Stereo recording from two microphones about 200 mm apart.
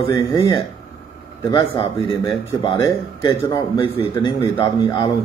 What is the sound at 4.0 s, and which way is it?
Speech, 25° left (ahead or behind).